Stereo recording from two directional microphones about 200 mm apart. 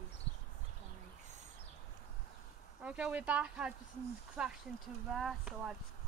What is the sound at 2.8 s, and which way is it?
Speech, 5° right (ahead or behind).